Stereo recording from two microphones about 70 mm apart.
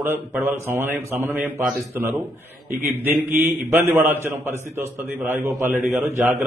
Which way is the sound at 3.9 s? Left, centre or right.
Right.